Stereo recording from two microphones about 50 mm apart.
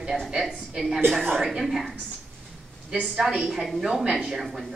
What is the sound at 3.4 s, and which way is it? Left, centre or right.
Speech, centre.